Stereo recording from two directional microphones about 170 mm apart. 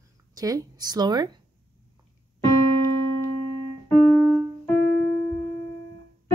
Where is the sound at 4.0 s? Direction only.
10° left (ahead or behind).